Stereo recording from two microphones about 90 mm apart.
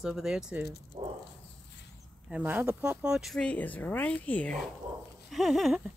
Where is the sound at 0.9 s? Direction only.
60° right (ahead or behind).